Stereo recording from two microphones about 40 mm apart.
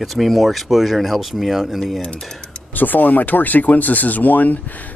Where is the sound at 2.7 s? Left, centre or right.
Left.